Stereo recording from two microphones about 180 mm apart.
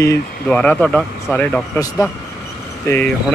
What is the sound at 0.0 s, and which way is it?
Speech, 15° left (ahead or behind).